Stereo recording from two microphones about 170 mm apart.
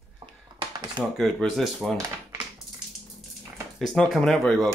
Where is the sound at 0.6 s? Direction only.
25° right (ahead or behind).